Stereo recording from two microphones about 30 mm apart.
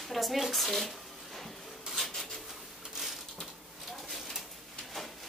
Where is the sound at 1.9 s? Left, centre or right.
Centre.